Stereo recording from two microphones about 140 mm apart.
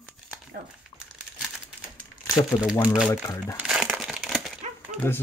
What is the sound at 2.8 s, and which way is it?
Speech, 5° right (ahead or behind).